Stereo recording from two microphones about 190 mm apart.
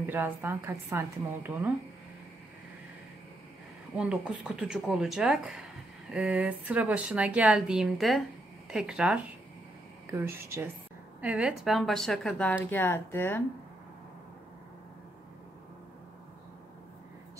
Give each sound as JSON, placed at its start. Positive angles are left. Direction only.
{"t": 0.0, "sound": "a woman's voice", "side_deg": -10}
{"t": 3.9, "sound": "a woman's voice", "side_deg": -5}